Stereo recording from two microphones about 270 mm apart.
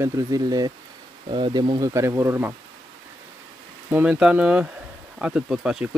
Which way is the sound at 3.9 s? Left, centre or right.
Centre.